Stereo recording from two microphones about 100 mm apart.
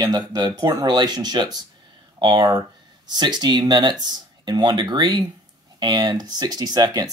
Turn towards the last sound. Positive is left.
turn(degrees=-40)  # may be behind; listen again after turning